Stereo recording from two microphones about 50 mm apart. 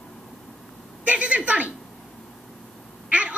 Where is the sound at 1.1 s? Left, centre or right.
Right.